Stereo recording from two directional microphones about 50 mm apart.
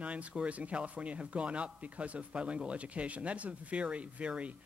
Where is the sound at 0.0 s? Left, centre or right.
Right.